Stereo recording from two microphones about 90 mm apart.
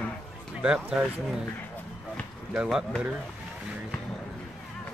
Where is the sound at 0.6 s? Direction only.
15° right (ahead or behind).